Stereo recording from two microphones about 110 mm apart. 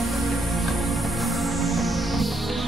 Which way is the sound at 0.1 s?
Centre (ahead or behind).